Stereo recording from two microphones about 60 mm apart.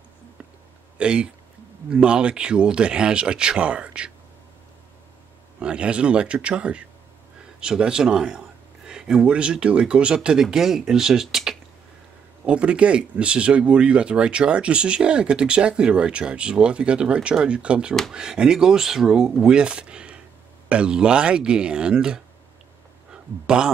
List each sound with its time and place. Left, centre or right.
0.9 s speech: centre
5.6 s speech: centre
12.4 s a man's voice: centre